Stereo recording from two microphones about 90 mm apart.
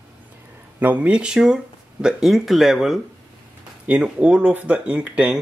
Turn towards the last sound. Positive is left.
turn(degrees=-15)  # may be behind; listen again after turning